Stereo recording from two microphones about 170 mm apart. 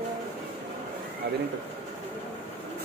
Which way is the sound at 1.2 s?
80° right.